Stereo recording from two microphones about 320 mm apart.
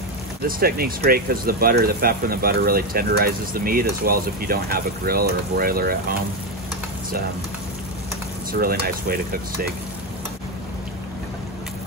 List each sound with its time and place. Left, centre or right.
0.4 s speech: right
8.5 s speech: right